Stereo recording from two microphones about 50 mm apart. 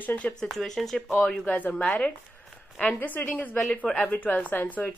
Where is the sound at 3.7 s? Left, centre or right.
Left.